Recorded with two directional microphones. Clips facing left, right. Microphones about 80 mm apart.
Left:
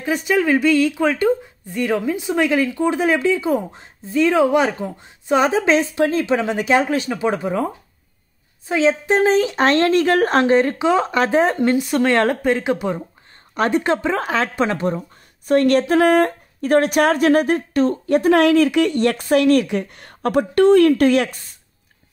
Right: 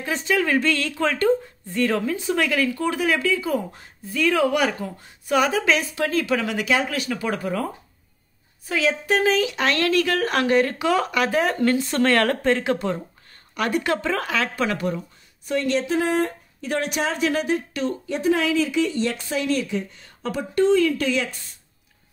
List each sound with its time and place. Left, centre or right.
0.0 s a woman's voice: centre
11.8 s speech: centre
12.1 s a woman's voice: left
13.6 s a woman's voice: left
15.4 s speech: left
18.1 s speech: left